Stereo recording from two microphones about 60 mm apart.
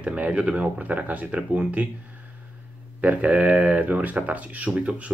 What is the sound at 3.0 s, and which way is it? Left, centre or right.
Speech, right.